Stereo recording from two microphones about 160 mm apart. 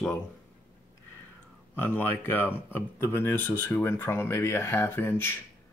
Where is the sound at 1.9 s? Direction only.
15° left (ahead or behind).